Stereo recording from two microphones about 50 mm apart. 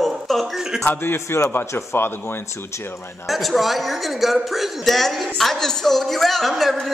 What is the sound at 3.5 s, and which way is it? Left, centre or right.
Speech, centre.